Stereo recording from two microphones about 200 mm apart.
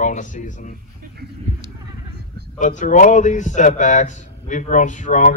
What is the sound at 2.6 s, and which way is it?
A man's voice, 40° left (ahead or behind).